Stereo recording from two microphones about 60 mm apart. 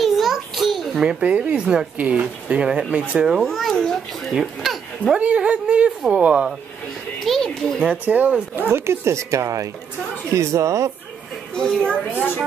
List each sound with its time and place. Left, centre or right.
0.0 s a sound: centre
1.0 s speech: right
3.4 s a child's voice: centre
5.0 s a woman's voice: centre
7.2 s a sound: centre
7.8 s a woman's voice: right
8.6 s speech: right
11.5 s a woman's voice: centre